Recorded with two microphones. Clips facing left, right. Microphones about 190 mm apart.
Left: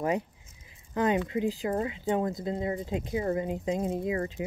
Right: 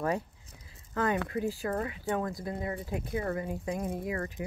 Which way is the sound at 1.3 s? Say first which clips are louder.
Left 3 dB; 20° left (ahead or behind).